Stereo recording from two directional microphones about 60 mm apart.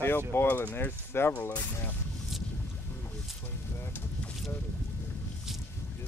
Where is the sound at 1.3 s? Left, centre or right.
Left.